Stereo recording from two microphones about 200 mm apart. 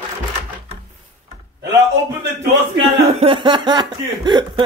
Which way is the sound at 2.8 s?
25° right (ahead or behind).